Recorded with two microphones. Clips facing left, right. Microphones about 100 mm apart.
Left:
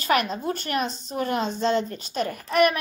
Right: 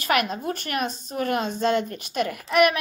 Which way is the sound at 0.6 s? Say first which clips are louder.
Left 1 dB; 50° right (ahead or behind).